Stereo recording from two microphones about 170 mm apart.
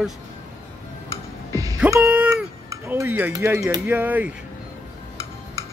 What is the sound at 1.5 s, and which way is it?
Music, 20° right (ahead or behind).